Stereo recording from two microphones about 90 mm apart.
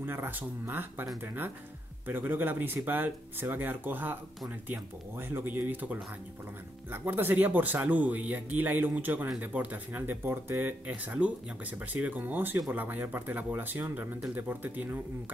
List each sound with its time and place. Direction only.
0.0 s speech: 25° right (ahead or behind)